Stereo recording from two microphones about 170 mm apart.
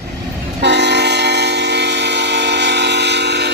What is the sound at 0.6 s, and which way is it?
Train, 90° right.